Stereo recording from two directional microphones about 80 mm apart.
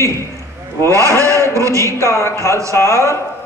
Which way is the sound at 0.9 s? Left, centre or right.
Right.